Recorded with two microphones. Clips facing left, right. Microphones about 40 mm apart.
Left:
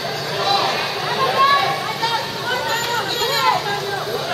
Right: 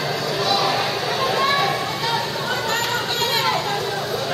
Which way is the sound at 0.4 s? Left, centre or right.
Centre.